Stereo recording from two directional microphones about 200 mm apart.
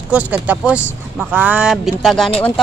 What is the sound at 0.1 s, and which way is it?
A woman's voice, 5° right (ahead or behind).